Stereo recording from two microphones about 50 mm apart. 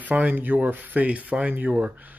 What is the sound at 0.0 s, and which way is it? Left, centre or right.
Speech, right.